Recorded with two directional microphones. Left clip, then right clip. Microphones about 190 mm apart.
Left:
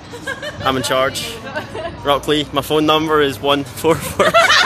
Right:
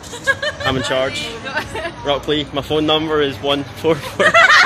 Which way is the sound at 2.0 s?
10° left (ahead or behind).